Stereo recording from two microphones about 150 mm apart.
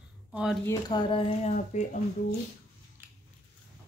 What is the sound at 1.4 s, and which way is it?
Speech, 55° left (ahead or behind).